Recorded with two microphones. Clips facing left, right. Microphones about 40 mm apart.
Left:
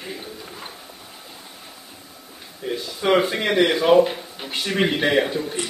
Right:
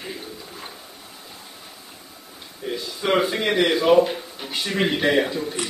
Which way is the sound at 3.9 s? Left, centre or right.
Centre.